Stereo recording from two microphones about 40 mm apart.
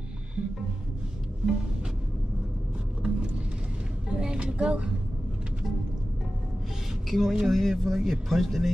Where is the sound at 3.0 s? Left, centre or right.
Right.